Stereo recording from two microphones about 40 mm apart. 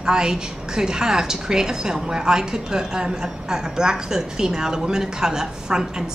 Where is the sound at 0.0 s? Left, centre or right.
Centre.